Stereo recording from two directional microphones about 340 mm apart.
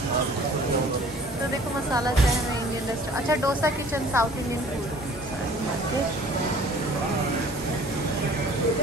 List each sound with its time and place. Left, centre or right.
3.3 s a woman's voice: centre